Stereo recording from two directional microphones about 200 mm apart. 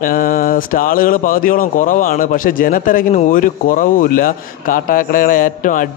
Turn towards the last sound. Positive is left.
turn(degrees=40)  # may be behind; listen again after turning